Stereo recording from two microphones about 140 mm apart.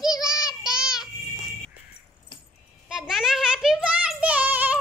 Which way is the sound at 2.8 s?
5° right (ahead or behind).